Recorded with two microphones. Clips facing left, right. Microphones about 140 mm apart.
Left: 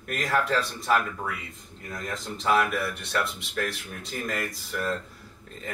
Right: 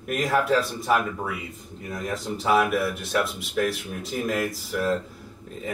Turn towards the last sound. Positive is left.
turn(degrees=-5)  # may be behind; listen again after turning